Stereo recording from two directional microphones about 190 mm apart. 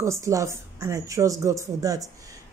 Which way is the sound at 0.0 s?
15° right (ahead or behind).